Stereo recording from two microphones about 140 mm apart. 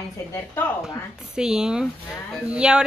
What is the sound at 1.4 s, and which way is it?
Speech, 5° right (ahead or behind).